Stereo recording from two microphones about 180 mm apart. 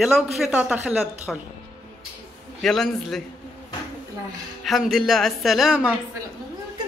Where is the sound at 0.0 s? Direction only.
5° right (ahead or behind).